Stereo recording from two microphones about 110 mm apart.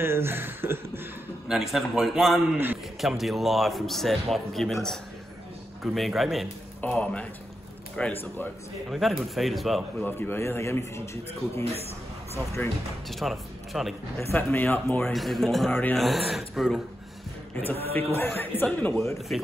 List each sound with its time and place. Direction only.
0.0 s speech: 20° right (ahead or behind)
1.5 s a man's voice: 5° right (ahead or behind)
5.8 s a man's voice: centre (ahead or behind)
6.8 s speech: 10° left (ahead or behind)
8.9 s a man's voice: centre (ahead or behind)
9.9 s a man's voice: 20° left (ahead or behind)
12.6 s speech: 15° left (ahead or behind)
13.1 s a man's voice: centre (ahead or behind)
14.3 s a man's voice: 20° left (ahead or behind)
15.1 s a man's voice: centre (ahead or behind)
15.7 s speech: 15° left (ahead or behind)
16.0 s a man's voice: centre (ahead or behind)
17.9 s a man's voice: 20° left (ahead or behind)
19.3 s a man's voice: 5° left (ahead or behind)